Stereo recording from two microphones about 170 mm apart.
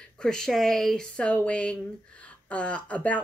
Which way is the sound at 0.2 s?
5° left (ahead or behind).